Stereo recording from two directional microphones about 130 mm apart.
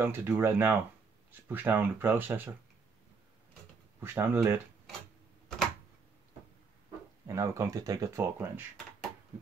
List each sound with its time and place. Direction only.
0.0 s speech: 20° right (ahead or behind)
4.0 s speech: 15° right (ahead or behind)
7.2 s speech: 25° right (ahead or behind)